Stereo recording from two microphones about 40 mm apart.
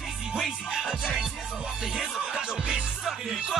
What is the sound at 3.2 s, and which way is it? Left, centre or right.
Music, centre.